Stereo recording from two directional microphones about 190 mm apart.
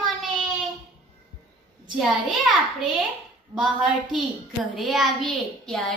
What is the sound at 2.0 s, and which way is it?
A child's voice, centre (ahead or behind).